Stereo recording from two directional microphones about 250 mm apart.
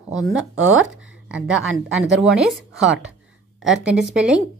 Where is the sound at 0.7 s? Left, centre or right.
Right.